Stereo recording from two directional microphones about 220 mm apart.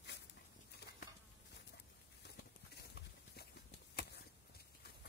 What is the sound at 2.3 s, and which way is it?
Clip-clop, 50° left (ahead or behind).